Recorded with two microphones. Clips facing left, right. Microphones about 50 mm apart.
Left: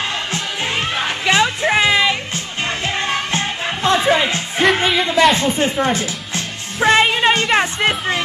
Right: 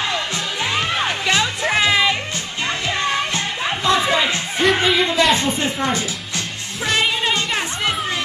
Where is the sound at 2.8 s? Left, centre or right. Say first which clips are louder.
Right 1 dB; left.